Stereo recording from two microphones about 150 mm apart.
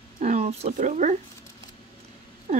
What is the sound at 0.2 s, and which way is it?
Speech, 45° right (ahead or behind).